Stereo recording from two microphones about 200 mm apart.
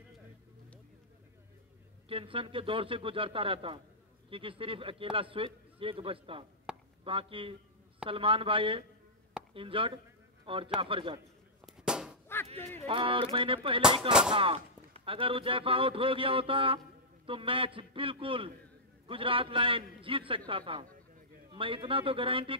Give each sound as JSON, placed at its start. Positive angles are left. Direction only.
{"t": 2.0, "sound": "a man's voice", "side_deg": -25}
{"t": 6.7, "sound": "chop", "side_deg": -5}
{"t": 7.1, "sound": "a man's voice", "side_deg": -25}
{"t": 11.6, "sound": "a sound", "side_deg": -5}
{"t": 12.8, "sound": "a man's voice", "side_deg": -25}